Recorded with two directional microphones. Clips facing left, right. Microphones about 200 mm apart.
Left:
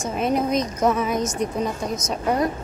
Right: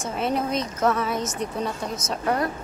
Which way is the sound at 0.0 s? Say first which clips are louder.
Left 3 dB; 15° left (ahead or behind).